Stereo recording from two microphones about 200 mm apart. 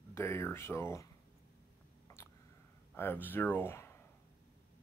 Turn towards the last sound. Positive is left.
turn(degrees=10)  # may be behind; listen again after turning